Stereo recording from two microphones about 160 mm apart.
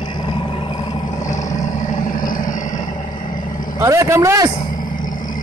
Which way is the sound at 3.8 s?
15° right (ahead or behind).